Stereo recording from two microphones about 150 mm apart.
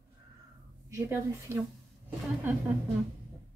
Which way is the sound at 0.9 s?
20° right (ahead or behind).